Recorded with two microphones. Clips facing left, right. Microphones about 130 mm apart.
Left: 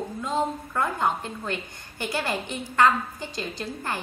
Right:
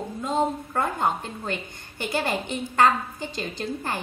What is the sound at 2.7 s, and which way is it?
A woman's voice, 20° right (ahead or behind).